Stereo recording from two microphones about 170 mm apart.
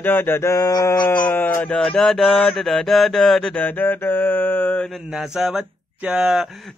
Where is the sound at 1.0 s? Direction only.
10° left (ahead or behind).